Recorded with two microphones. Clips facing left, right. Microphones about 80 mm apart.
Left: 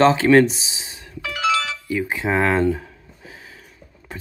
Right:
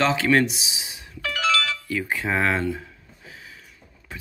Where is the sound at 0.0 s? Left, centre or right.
Left.